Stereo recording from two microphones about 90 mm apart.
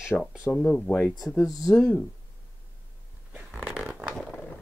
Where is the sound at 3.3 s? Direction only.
10° right (ahead or behind).